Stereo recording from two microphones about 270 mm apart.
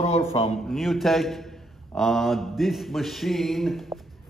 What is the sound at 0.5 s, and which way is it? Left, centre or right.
A man's voice, centre.